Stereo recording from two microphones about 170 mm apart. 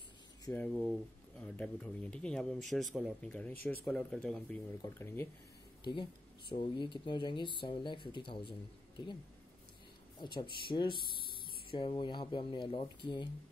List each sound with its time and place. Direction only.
0.5 s speech: 10° left (ahead or behind)
6.5 s speech: 30° left (ahead or behind)
10.2 s speech: 30° left (ahead or behind)